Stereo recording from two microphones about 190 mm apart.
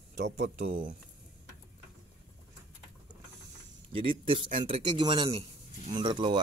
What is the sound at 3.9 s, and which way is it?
Speech, 30° right (ahead or behind).